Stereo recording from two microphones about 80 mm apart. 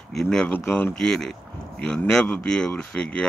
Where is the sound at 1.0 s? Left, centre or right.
Centre.